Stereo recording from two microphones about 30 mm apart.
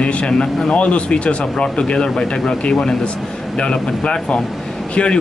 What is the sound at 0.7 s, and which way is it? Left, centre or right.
Speech, left.